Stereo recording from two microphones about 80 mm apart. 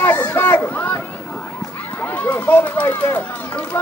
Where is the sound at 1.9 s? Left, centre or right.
Left.